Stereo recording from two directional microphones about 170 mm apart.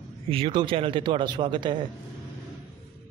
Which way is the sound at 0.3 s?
30° right (ahead or behind).